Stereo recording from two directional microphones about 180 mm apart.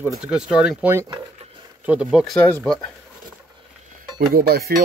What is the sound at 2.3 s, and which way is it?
Speech, 15° left (ahead or behind).